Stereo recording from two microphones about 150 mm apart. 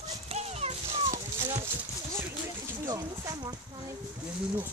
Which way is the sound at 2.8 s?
25° right (ahead or behind).